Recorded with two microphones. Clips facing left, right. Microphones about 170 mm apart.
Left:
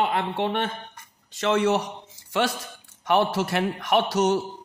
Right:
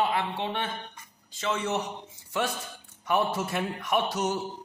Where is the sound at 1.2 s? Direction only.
70° left (ahead or behind).